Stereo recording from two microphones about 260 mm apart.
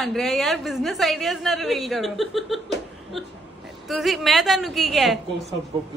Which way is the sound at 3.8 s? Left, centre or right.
Centre.